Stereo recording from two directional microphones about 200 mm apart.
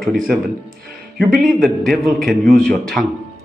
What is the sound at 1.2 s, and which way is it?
Speech, centre (ahead or behind).